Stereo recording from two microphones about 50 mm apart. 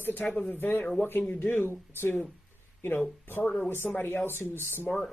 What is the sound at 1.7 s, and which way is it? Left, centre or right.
Speech, left.